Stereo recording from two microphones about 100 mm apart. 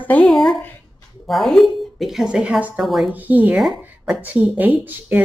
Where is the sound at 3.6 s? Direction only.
Centre (ahead or behind).